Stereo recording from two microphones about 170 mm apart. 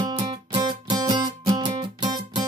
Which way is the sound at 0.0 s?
25° right (ahead or behind).